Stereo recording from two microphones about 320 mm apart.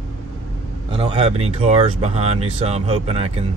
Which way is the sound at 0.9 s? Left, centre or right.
Centre.